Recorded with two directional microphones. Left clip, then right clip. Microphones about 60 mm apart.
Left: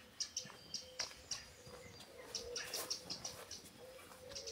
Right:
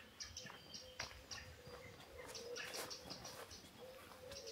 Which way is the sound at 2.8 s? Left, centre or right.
Left.